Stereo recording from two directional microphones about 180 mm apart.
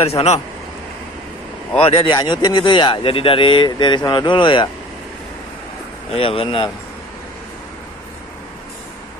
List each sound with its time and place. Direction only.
0.0 s speech: 35° left (ahead or behind)
1.8 s speech: 30° left (ahead or behind)
6.1 s speech: 30° left (ahead or behind)